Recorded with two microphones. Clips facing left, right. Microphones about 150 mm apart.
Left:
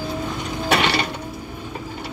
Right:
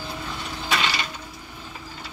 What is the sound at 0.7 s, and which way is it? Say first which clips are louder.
Sewing machine: left 6 dB; 65° left (ahead or behind).